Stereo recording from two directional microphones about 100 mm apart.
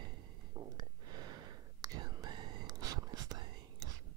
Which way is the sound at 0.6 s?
35° right (ahead or behind).